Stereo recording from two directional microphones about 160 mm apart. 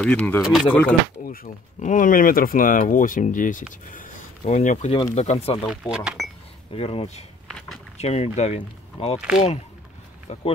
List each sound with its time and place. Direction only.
0.0 s speech: 5° left (ahead or behind)
0.4 s speech: 5° right (ahead or behind)
0.7 s speech: 10° left (ahead or behind)
1.2 s speech: 65° left (ahead or behind); by 5.6 s 40° left (ahead or behind)
5.7 s speech: 5° right (ahead or behind)
6.7 s speech: 35° left (ahead or behind)
7.4 s a sound: centre (ahead or behind)
8.0 s speech: 45° left (ahead or behind)